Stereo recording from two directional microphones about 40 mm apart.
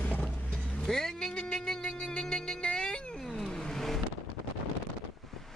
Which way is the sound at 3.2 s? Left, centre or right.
Centre.